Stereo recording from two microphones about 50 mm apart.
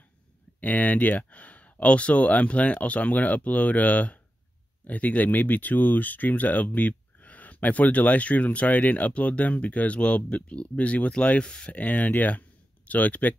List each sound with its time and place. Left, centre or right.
0.6 s speech: left; by 11.7 s centre
11.7 s speech: left